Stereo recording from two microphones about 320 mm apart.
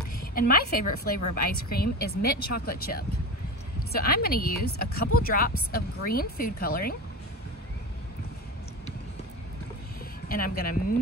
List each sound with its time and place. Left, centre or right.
0.2 s a woman's voice: left
10.2 s speech: left